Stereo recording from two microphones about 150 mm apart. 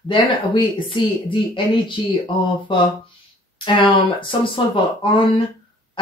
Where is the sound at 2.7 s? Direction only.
30° left (ahead or behind).